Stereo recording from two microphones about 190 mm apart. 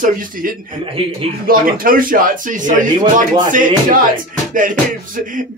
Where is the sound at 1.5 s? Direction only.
50° right (ahead or behind).